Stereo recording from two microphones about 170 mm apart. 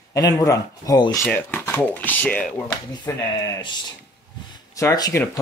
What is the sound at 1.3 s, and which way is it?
Speech, 10° left (ahead or behind).